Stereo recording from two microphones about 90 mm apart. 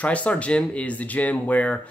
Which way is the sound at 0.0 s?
15° left (ahead or behind).